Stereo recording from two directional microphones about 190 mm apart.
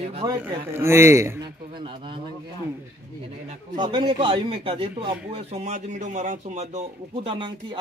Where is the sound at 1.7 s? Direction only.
25° right (ahead or behind).